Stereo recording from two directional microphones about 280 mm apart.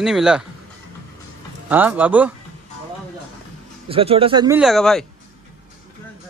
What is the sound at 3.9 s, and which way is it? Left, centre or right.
Speech, centre.